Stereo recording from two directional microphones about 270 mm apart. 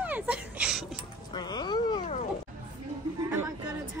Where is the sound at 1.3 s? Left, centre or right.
Centre.